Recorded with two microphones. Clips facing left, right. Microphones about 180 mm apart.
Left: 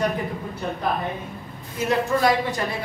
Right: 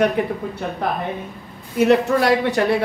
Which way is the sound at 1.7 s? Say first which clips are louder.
Right 7 dB; 70° right (ahead or behind).